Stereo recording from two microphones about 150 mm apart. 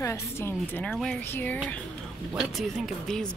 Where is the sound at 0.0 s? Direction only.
15° left (ahead or behind).